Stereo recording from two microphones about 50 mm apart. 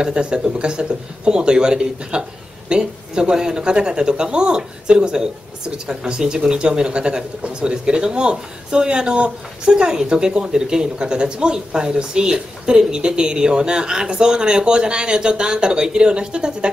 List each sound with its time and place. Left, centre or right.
0.0 s speech: centre